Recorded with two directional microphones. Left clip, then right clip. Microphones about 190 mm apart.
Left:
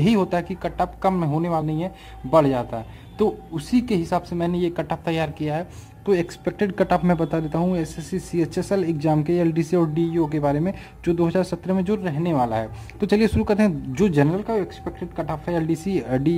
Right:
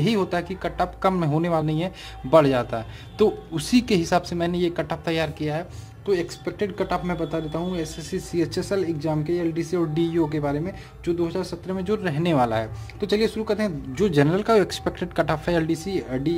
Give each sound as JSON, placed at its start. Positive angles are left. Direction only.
{"t": 0.0, "sound": "speech", "side_deg": 10}
{"t": 6.0, "sound": "speech", "side_deg": 30}
{"t": 8.1, "sound": "speech", "side_deg": 10}
{"t": 9.9, "sound": "speech", "side_deg": 0}
{"t": 10.3, "sound": "speech", "side_deg": 20}
{"t": 12.0, "sound": "speech", "side_deg": 0}
{"t": 13.0, "sound": "speech", "side_deg": 25}
{"t": 14.1, "sound": "speech", "side_deg": 0}
{"t": 14.4, "sound": "speech", "side_deg": -20}
{"t": 15.5, "sound": "speech", "side_deg": 0}
{"t": 15.8, "sound": "speech", "side_deg": 20}